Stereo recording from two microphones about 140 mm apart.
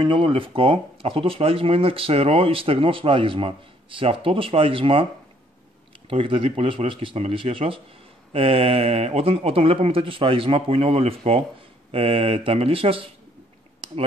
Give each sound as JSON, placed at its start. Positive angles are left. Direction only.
{"t": 0.0, "sound": "speech", "side_deg": -35}
{"t": 6.0, "sound": "speech", "side_deg": -40}